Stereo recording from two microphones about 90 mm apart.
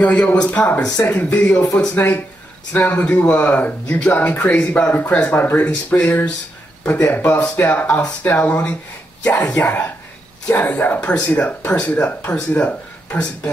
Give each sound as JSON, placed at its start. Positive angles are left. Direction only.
{"t": 0.0, "sound": "speech", "side_deg": 15}